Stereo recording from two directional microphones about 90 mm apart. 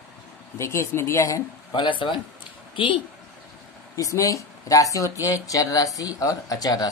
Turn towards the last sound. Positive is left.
turn(degrees=45)  # may be behind; listen again after turning